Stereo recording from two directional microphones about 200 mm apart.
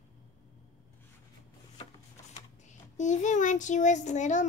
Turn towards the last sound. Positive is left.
turn(degrees=35)  # may be behind; listen again after turning